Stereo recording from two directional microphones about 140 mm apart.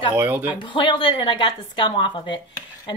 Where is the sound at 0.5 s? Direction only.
35° left (ahead or behind).